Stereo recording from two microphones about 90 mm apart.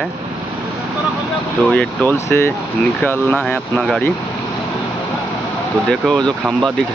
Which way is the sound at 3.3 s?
10° left (ahead or behind).